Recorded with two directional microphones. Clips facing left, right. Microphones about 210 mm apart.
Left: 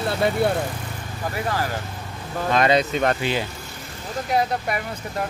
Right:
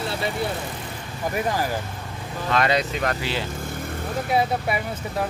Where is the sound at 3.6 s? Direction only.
55° right (ahead or behind).